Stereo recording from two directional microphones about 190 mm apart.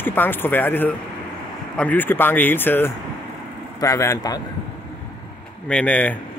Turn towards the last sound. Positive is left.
turn(degrees=5)  # may be behind; listen again after turning